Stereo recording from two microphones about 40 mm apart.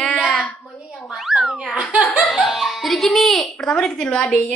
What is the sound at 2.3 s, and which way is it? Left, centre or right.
A child's voice, centre.